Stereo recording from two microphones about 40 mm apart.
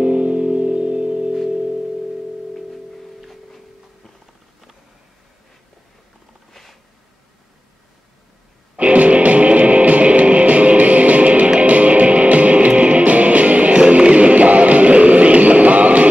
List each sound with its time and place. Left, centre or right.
0.0 s music: right
3.2 s music: centre
6.5 s a sound: centre
8.7 s music: right